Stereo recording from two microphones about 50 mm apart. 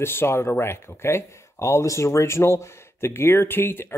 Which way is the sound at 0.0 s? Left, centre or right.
Left.